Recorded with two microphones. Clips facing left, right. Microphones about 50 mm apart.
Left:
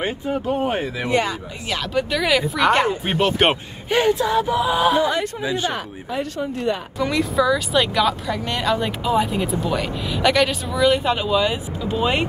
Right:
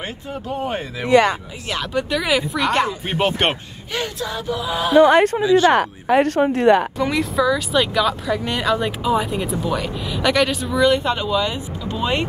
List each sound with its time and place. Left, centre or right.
0.0 s speech: centre
1.7 s speech: centre
2.6 s speech: centre
3.9 s speech: centre
5.0 s speech: right
5.6 s speech: right
7.0 s speech: centre